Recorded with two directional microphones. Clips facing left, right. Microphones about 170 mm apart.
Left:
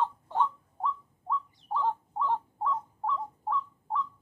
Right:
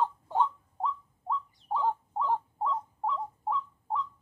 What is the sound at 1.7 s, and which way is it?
Bird, 15° right (ahead or behind).